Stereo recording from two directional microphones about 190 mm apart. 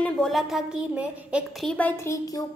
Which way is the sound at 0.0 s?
Centre (ahead or behind).